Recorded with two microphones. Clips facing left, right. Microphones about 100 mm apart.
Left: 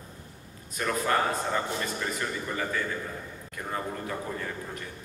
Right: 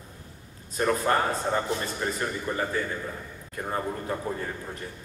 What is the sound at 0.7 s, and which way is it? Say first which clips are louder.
A man's voice: right 3 dB; 30° right (ahead or behind).